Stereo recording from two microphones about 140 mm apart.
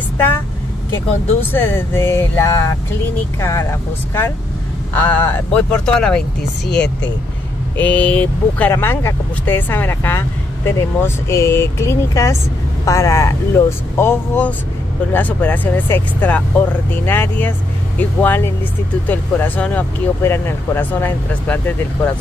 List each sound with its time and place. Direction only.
1.5 s speech: 15° left (ahead or behind)
4.9 s speech: 10° left (ahead or behind)